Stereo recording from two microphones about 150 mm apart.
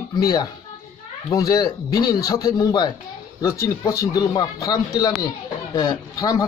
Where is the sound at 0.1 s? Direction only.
25° left (ahead or behind).